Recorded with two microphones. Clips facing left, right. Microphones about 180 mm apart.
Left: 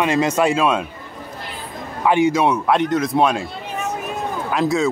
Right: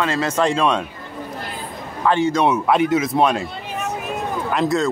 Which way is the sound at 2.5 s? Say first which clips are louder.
Right 1 dB; 5° right (ahead or behind).